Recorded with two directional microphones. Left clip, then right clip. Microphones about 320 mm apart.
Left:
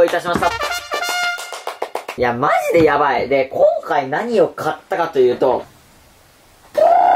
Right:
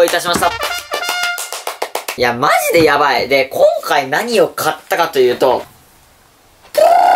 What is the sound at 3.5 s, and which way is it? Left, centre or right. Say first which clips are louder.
Speech: right 1 dB; centre.